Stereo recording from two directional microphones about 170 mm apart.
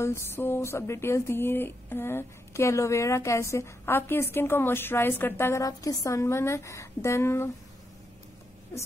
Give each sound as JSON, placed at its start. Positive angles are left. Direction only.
{"t": 0.0, "sound": "speech", "side_deg": 15}